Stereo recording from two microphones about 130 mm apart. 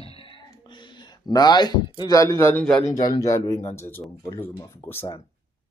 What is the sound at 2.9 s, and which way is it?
Speech, 30° left (ahead or behind).